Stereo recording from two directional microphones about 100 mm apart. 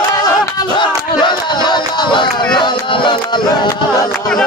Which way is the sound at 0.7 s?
50° left (ahead or behind).